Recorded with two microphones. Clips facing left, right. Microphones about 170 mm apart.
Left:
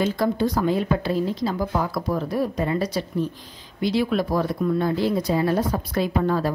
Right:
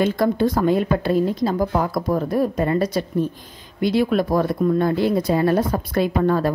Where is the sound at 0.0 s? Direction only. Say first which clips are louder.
Right 3 dB; 55° right (ahead or behind).